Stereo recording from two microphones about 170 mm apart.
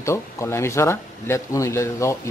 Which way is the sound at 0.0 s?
15° left (ahead or behind).